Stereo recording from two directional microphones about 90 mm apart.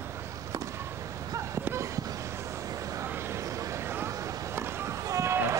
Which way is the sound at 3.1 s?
30° right (ahead or behind).